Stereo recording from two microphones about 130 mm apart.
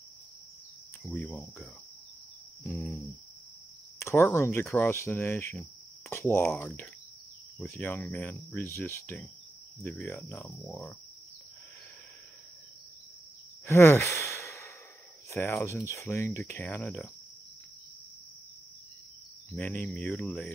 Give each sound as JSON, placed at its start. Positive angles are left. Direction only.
{"t": 1.1, "sound": "speech", "side_deg": 5}
{"t": 2.6, "sound": "speech", "side_deg": 15}
{"t": 4.0, "sound": "speech", "side_deg": 20}
{"t": 10.6, "sound": "speech", "side_deg": 10}
{"t": 13.7, "sound": "speech", "side_deg": 20}
{"t": 19.5, "sound": "speech", "side_deg": 10}